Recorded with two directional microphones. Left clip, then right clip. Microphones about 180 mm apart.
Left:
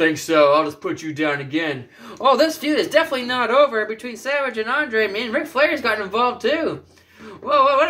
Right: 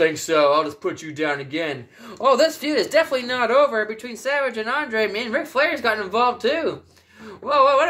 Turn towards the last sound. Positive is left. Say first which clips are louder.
# left 1 dB
turn(degrees=-45)  # may be behind; listen again after turning